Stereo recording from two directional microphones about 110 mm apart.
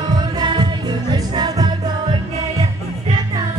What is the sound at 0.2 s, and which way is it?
Music, 45° right (ahead or behind).